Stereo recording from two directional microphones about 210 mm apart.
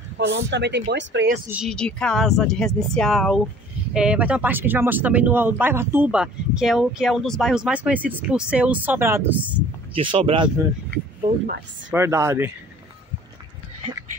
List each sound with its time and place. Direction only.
0.3 s speech: 55° right (ahead or behind)
1.5 s speech: centre (ahead or behind)
9.9 s speech: 25° right (ahead or behind)
11.9 s speech: 15° right (ahead or behind)